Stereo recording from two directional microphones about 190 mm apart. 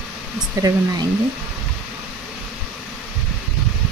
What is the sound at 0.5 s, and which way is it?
Speech, 20° right (ahead or behind).